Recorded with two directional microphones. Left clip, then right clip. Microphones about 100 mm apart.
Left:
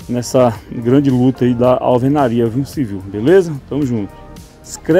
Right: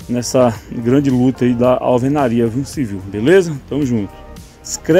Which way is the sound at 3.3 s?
15° left (ahead or behind).